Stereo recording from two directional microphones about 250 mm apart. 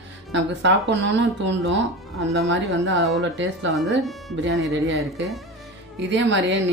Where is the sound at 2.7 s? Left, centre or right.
Right.